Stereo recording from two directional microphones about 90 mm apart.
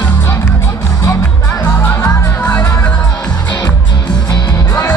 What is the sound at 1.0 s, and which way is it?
Music, 40° left (ahead or behind).